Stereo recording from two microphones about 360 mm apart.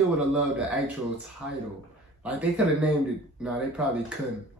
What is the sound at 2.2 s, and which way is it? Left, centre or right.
Speech, centre.